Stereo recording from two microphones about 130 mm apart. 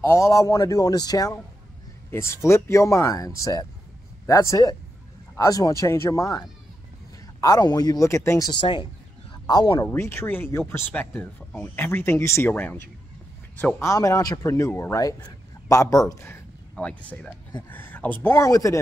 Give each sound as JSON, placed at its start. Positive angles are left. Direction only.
{"t": 0.0, "sound": "speech", "side_deg": 20}
{"t": 8.5, "sound": "speech", "side_deg": 35}
{"t": 9.9, "sound": "speech", "side_deg": 20}
{"t": 13.7, "sound": "speech", "side_deg": 25}
{"t": 16.7, "sound": "speech", "side_deg": 10}